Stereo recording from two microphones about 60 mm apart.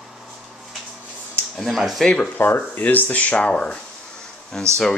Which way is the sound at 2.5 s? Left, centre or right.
Left.